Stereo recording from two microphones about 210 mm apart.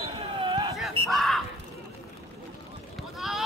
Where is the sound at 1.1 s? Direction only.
Centre (ahead or behind).